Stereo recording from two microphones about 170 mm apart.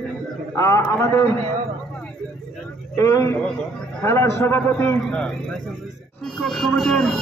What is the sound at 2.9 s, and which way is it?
A man's voice, 15° left (ahead or behind).